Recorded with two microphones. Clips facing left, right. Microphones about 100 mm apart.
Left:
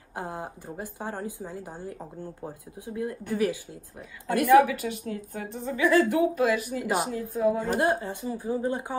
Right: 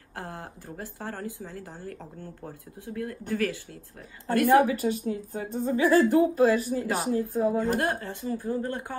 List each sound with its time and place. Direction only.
0.1 s speech: 15° left (ahead or behind)
4.5 s a woman's voice: 35° right (ahead or behind)
7.5 s speech: 15° left (ahead or behind)